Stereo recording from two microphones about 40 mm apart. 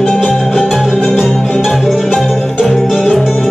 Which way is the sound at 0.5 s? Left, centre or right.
Centre.